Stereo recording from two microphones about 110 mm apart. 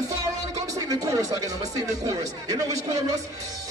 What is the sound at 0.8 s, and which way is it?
Speech, 30° right (ahead or behind).